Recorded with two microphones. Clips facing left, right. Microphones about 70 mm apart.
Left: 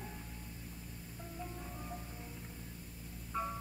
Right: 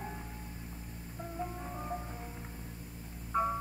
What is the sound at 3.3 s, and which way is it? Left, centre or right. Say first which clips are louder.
Hum: right 8 dB; right.